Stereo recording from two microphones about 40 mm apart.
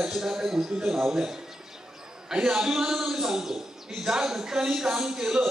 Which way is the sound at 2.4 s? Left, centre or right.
Centre.